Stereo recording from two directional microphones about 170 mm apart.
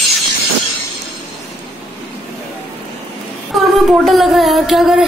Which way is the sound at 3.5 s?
Centre (ahead or behind).